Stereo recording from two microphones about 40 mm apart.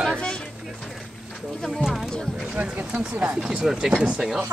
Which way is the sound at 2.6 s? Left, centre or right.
Right.